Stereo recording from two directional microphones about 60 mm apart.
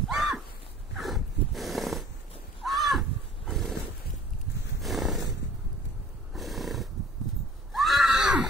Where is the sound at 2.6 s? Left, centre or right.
Centre.